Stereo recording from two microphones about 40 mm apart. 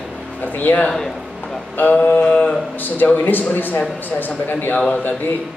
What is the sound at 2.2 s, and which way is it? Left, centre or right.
Mantra, left.